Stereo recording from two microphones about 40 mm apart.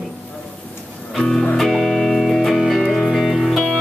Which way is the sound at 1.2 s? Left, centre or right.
Centre.